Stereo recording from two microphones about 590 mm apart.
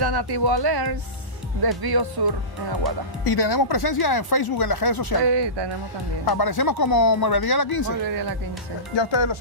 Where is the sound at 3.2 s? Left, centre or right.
Left.